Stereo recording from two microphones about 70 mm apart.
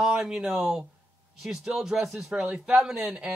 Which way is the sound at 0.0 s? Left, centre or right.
Centre.